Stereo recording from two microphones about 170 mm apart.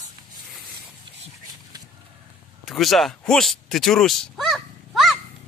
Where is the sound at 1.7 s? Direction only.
25° right (ahead or behind).